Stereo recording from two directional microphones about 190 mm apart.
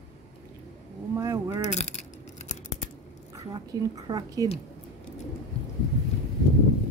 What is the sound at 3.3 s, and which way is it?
A woman's voice, 20° right (ahead or behind).